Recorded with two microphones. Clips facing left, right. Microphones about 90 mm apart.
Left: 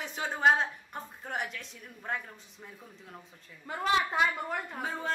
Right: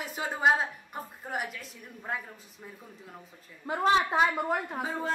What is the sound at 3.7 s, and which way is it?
A woman's voice, 30° right (ahead or behind).